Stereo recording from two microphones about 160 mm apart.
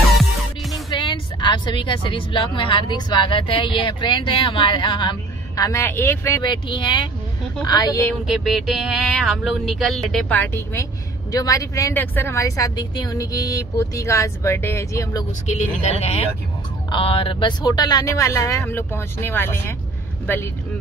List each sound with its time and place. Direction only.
0.8 s a woman's voice: 30° left (ahead or behind)
5.6 s speech: 20° left (ahead or behind)
6.4 s speech: 30° left (ahead or behind)
8.3 s speech: centre (ahead or behind); by 15.2 s 20° left (ahead or behind)
15.4 s speech: 45° left (ahead or behind); by 20.4 s 15° left (ahead or behind)